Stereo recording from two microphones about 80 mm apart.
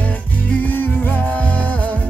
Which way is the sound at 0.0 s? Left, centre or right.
Centre.